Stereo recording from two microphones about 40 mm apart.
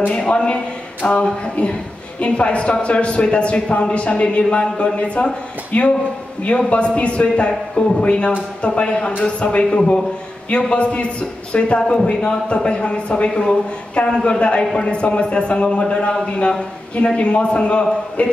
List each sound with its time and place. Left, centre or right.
0.1 s a man's voice: left
14.6 s speech: centre
14.9 s a man's voice: left